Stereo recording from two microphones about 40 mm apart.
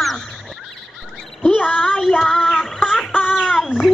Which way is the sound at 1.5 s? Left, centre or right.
Left.